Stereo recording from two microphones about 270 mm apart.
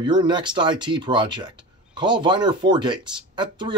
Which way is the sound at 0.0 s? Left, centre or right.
Centre.